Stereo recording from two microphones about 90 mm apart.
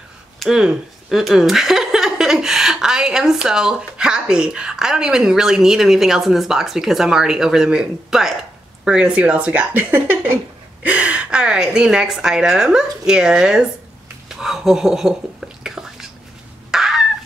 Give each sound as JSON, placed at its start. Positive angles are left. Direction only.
{"t": 0.4, "sound": "a woman's voice", "side_deg": -5}
{"t": 14.3, "sound": "whispering", "side_deg": -5}
{"t": 16.7, "sound": "fowl", "side_deg": -5}